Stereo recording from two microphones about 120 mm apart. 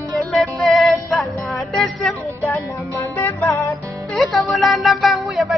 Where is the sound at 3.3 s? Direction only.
20° left (ahead or behind).